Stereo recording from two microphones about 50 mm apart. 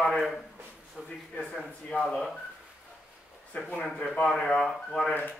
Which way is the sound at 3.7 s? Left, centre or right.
Left.